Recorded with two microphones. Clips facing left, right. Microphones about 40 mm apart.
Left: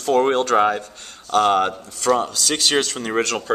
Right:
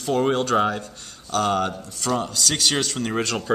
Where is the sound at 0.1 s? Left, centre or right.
Left.